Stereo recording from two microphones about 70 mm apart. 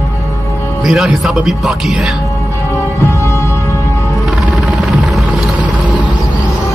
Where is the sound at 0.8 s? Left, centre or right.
Centre.